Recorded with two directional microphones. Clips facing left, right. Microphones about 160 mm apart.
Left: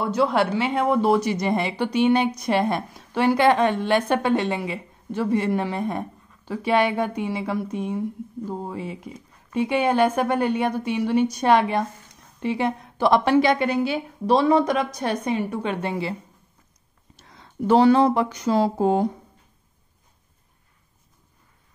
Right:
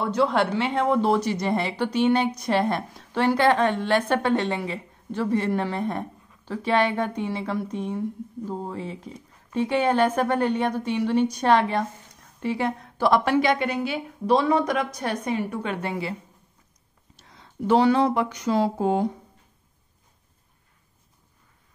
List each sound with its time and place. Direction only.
0.0 s a woman's voice: 10° left (ahead or behind); by 16.2 s 25° left (ahead or behind)
17.6 s speech: 35° left (ahead or behind)